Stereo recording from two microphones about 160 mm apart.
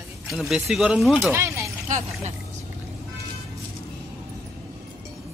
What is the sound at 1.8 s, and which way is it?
Speech, 50° right (ahead or behind).